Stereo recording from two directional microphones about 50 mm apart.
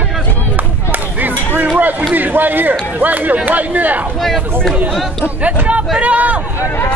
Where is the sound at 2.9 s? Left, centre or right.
Right.